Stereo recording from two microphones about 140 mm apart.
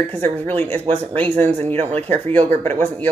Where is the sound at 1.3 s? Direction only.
50° right (ahead or behind).